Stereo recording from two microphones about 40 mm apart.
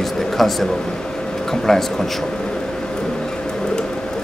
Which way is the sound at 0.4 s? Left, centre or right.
Centre.